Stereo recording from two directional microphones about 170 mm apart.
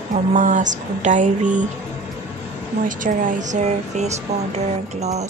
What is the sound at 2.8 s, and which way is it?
Speech, 50° right (ahead or behind).